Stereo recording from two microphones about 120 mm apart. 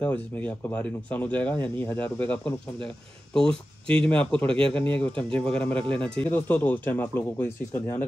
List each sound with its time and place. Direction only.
0.0 s speech: 15° left (ahead or behind)